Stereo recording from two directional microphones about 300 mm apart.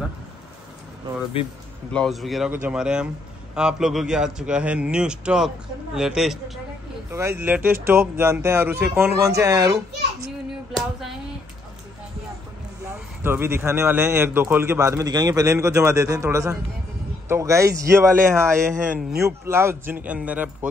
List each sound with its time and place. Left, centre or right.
1.4 s speech: centre
1.9 s a man's voice: centre
10.7 s a sound: centre
13.2 s a man's voice: centre